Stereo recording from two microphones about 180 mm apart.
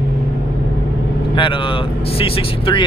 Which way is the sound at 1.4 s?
25° left (ahead or behind).